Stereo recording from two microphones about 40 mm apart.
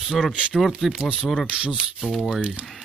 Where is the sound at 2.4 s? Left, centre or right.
Right.